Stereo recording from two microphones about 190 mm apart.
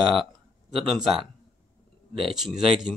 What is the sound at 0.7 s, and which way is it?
Speech, centre (ahead or behind).